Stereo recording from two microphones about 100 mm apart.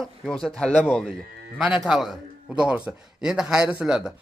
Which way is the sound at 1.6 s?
10° right (ahead or behind).